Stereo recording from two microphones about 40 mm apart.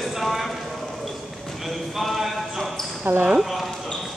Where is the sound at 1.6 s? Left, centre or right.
Centre.